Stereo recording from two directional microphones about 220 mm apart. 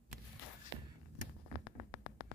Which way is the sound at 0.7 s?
55° right (ahead or behind).